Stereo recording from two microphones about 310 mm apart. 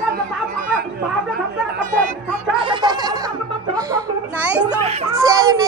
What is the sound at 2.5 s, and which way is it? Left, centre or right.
A child's voice, centre.